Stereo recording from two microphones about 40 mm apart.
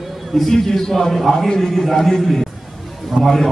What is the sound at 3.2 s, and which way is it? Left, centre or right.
Speech, centre.